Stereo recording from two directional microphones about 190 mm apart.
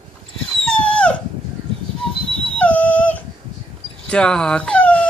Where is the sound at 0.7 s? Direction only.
5° left (ahead or behind).